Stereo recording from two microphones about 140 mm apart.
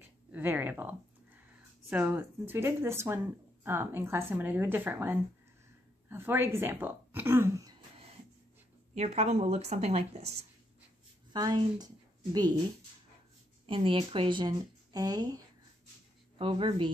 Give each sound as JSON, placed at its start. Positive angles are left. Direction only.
{"t": 0.3, "sound": "speech", "side_deg": -15}
{"t": 8.9, "sound": "a woman's voice", "side_deg": -50}
{"t": 11.3, "sound": "a woman's voice", "side_deg": -30}
{"t": 13.7, "sound": "speech", "side_deg": -40}
{"t": 16.3, "sound": "speech", "side_deg": -40}